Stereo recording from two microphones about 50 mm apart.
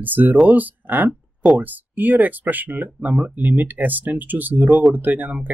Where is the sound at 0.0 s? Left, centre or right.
Right.